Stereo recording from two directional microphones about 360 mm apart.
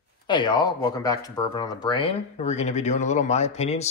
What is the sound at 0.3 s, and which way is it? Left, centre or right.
Speech, centre.